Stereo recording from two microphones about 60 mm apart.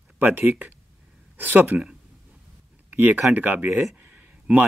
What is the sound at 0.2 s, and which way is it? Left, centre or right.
Speech, right.